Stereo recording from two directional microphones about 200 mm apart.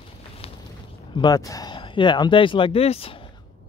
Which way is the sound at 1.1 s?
20° left (ahead or behind).